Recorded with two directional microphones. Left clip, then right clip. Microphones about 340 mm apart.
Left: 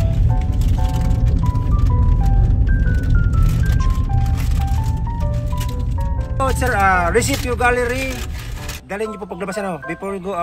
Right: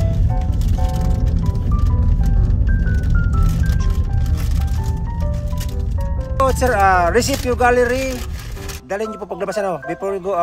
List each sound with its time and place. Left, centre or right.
6.6 s speech: right